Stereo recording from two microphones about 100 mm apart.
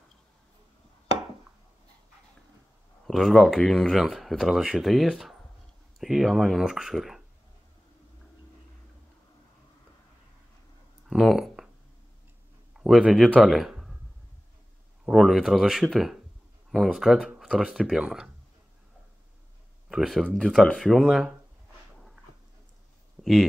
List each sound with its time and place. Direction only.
3.1 s speech: centre (ahead or behind)
11.1 s a sound: centre (ahead or behind)
12.7 s speech: 5° right (ahead or behind)
15.0 s speech: 5° right (ahead or behind)
19.9 s speech: 5° right (ahead or behind)